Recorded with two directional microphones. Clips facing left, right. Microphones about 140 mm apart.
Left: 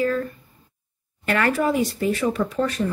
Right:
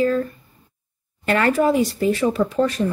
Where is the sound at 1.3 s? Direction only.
25° right (ahead or behind).